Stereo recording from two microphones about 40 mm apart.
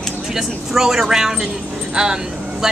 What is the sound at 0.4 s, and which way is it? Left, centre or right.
Speech, centre.